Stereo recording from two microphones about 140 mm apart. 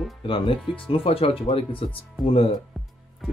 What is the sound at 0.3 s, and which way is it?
Speech, 40° left (ahead or behind).